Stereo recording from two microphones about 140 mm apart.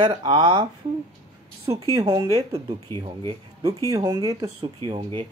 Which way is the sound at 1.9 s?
30° right (ahead or behind).